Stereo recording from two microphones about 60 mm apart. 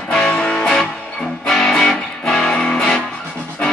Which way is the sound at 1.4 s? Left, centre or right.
Centre.